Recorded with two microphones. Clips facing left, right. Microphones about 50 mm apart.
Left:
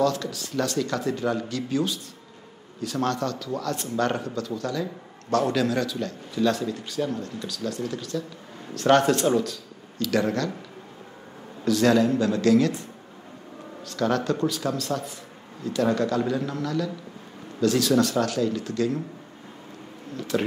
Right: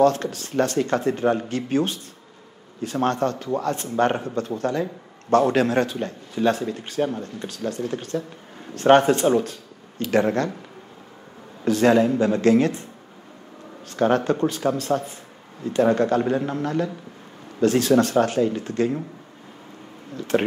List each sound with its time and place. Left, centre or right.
0.0 s speech: right
11.6 s speech: right
13.8 s speech: right
20.3 s speech: right